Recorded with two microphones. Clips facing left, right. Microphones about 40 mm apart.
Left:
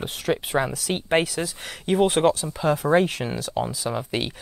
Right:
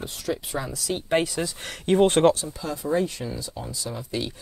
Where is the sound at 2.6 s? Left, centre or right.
Left.